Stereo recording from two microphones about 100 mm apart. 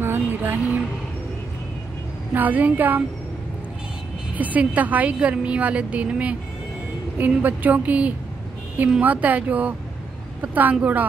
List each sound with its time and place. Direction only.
0.0 s a sound: 20° right (ahead or behind)
2.3 s a woman's voice: 15° right (ahead or behind)
4.4 s a woman's voice: 15° right (ahead or behind)